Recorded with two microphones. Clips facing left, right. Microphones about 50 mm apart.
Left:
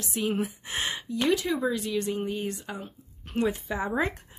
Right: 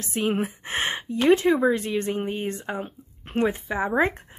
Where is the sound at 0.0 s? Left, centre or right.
Right.